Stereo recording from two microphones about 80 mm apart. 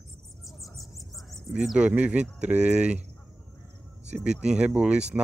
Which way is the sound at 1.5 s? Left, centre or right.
Centre.